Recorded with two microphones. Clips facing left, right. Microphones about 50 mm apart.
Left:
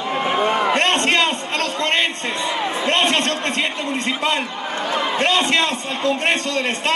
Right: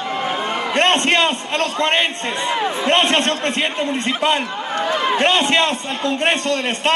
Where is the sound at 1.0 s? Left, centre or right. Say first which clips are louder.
Right 1 dB; centre.